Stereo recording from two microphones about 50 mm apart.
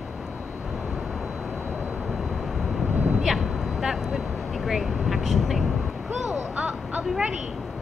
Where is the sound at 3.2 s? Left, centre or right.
Centre.